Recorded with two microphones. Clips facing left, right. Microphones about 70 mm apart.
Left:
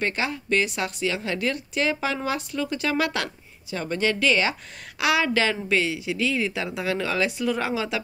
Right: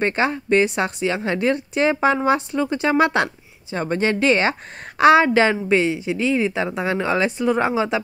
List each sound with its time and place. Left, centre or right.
0.0 s a woman's voice: right